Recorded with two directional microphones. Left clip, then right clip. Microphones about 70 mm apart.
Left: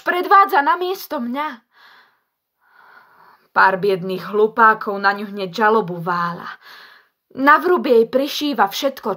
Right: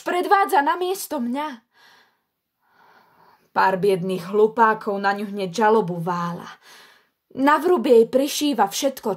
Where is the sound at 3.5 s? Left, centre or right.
Right.